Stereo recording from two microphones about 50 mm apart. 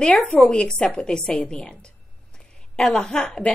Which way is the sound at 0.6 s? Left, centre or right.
Centre.